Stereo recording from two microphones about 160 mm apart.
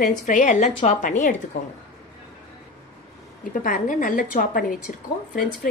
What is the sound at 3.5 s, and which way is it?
A woman's voice, 55° left (ahead or behind).